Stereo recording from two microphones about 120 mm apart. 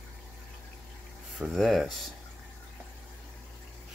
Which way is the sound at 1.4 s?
Centre (ahead or behind).